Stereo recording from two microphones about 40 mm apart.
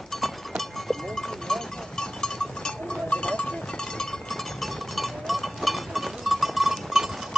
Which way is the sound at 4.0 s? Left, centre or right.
Centre.